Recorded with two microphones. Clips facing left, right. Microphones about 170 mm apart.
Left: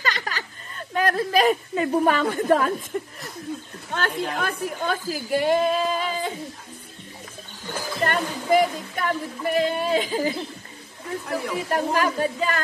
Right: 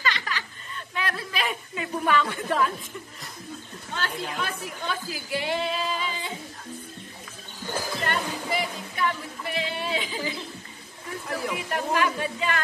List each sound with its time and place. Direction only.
0.0 s a woman's voice: 45° left (ahead or behind)
2.9 s chuckle: 55° left (ahead or behind)
3.9 s a woman's voice: 55° left (ahead or behind)
8.0 s speech: 45° left (ahead or behind)
11.5 s a woman's voice: 40° left (ahead or behind)